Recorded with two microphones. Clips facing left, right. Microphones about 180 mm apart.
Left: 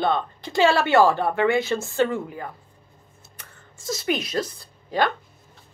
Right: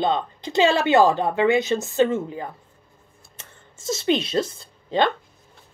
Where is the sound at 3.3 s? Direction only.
25° right (ahead or behind).